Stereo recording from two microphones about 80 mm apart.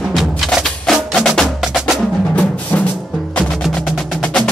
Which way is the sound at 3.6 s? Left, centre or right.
Centre.